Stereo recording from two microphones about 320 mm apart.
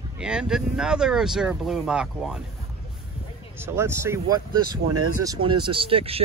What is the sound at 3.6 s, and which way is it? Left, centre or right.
Speech, centre.